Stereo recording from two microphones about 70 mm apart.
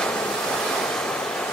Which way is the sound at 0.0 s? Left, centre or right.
Centre.